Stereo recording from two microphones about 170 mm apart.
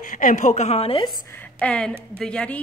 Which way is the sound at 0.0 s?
50° left (ahead or behind).